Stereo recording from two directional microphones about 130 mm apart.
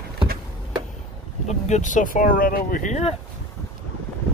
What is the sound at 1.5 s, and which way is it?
Speech, 60° left (ahead or behind).